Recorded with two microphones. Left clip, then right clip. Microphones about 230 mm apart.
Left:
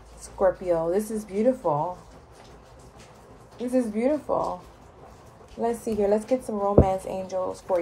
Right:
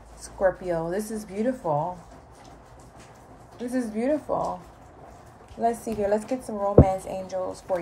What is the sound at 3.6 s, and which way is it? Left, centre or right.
Speech, left.